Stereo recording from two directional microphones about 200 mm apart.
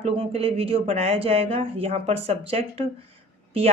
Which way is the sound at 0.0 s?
30° right (ahead or behind).